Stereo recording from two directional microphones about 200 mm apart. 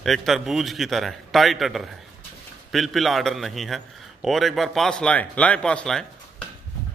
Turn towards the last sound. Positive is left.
turn(degrees=5)  # may be behind; listen again after turning